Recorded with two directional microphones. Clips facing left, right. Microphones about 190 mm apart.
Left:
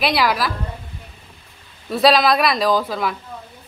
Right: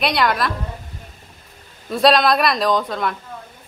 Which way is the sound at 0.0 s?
5° left (ahead or behind).